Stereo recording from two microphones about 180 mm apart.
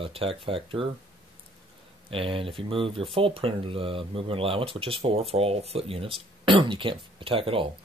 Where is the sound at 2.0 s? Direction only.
30° right (ahead or behind).